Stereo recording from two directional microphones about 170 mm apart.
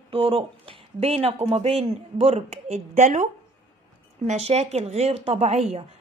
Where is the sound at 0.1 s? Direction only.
30° right (ahead or behind).